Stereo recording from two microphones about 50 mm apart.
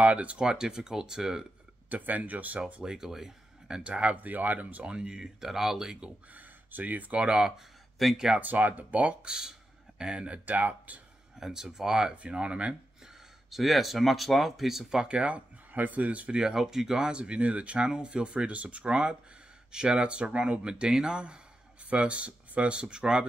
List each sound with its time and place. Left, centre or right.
0.0 s speech: right
1.9 s speech: right
2.8 s speech: centre; by 4.9 s right
4.9 s speech: centre
6.3 s speech: right; by 7.6 s centre
8.0 s speech: centre
8.4 s speech: right
9.2 s speech: centre; by 11.0 s right
11.3 s speech: centre
13.5 s speech: centre; by 16.3 s right
16.3 s speech: centre